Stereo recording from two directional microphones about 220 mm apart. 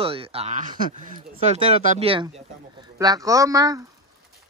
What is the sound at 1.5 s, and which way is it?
Speech, 25° right (ahead or behind).